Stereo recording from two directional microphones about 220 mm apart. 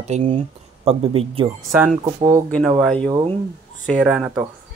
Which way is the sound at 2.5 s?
5° left (ahead or behind).